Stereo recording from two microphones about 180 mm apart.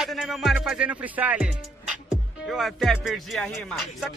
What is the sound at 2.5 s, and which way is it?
Music, centre (ahead or behind).